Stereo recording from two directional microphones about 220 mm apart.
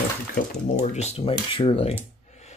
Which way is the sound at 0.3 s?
30° left (ahead or behind).